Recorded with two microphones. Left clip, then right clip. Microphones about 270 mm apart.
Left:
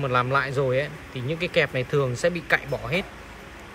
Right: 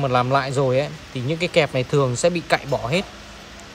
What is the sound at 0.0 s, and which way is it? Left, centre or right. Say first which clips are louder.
Speech: right 3 dB; centre.